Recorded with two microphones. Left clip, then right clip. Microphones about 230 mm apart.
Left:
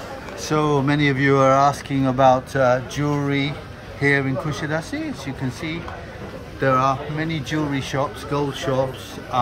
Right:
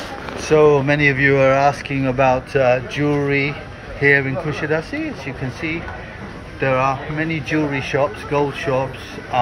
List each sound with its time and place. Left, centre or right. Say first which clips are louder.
0.4 s speech: right 7 dB; left